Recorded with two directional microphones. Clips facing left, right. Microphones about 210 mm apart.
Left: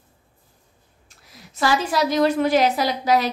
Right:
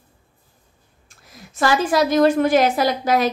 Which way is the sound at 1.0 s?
50° right (ahead or behind).